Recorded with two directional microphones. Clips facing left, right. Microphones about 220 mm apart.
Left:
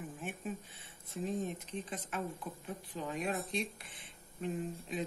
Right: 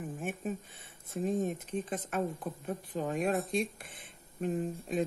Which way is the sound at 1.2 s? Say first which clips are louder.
Right 5 dB; 45° right (ahead or behind).